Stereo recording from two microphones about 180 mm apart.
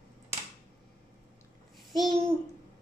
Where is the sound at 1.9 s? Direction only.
Centre (ahead or behind).